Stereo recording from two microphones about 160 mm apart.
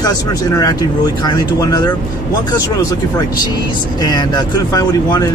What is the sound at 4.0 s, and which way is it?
Speech, 25° left (ahead or behind).